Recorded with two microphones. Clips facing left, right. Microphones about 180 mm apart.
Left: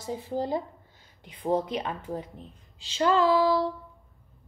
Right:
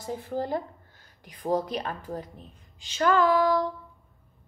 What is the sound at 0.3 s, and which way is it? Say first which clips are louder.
A woman's voice: left 1 dB; 20° left (ahead or behind).